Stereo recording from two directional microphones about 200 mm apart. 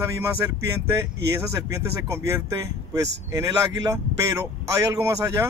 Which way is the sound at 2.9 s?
15° right (ahead or behind).